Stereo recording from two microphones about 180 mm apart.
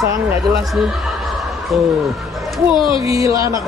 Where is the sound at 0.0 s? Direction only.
20° right (ahead or behind).